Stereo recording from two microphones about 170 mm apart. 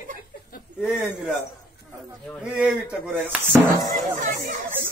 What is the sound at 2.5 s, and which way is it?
Speech, 10° right (ahead or behind).